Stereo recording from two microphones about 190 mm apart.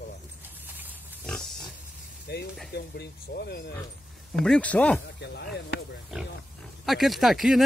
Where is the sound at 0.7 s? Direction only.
10° right (ahead or behind).